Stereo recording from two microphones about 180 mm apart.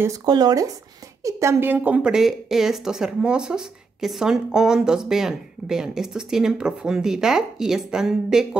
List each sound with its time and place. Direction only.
0.0 s a woman's voice: 20° right (ahead or behind); by 8.5 s 5° right (ahead or behind)